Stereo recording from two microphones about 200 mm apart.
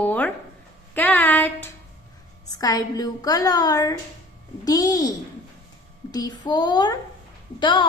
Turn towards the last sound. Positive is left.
turn(degrees=25)  # may be behind; listen again after turning